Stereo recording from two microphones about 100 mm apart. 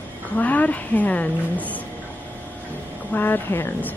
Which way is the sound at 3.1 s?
20° left (ahead or behind).